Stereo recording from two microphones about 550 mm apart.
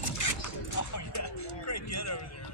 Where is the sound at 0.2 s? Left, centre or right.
Left.